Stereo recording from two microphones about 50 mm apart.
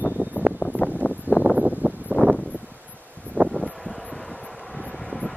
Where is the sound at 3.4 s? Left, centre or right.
Right.